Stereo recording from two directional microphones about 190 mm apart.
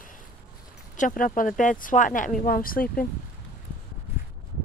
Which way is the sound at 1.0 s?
45° left (ahead or behind).